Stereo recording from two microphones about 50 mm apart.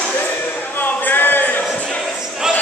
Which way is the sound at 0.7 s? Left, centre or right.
Left.